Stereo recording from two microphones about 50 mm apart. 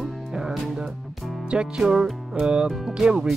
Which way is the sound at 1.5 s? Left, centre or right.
Centre.